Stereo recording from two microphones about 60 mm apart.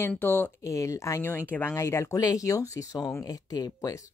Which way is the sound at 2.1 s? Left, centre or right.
Left.